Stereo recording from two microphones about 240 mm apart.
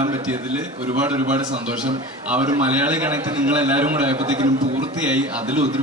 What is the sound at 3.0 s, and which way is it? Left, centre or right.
Speech, centre.